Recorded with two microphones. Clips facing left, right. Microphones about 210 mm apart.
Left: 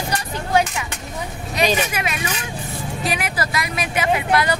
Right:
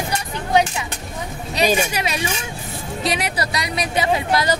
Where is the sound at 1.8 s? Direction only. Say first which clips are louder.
Right 1 dB; 30° right (ahead or behind).